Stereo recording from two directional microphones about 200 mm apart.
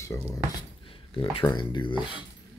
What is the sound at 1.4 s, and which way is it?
Speech, 20° left (ahead or behind).